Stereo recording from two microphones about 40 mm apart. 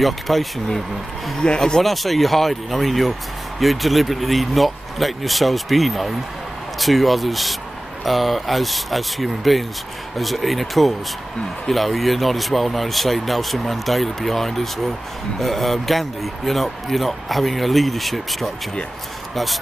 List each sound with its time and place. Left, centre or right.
0.0 s speech: centre
1.4 s speech: left
1.8 s speech: centre